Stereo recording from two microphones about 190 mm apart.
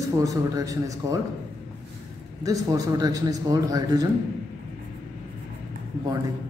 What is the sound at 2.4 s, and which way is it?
A man's voice, 20° right (ahead or behind).